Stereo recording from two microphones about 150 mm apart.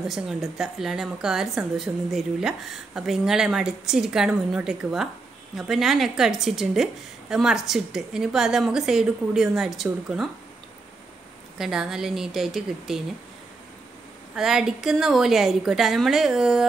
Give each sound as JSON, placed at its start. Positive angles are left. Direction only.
{"t": 0.0, "sound": "a woman's voice", "side_deg": 0}
{"t": 11.5, "sound": "a woman's voice", "side_deg": -5}
{"t": 14.3, "sound": "a woman's voice", "side_deg": -5}